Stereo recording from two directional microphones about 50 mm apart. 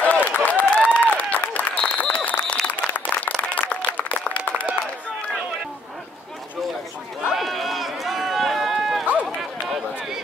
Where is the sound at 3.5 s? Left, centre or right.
Left.